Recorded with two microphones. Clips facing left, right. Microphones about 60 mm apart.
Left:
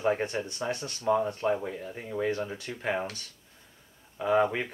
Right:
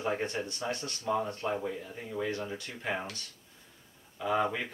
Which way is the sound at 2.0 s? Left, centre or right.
Left.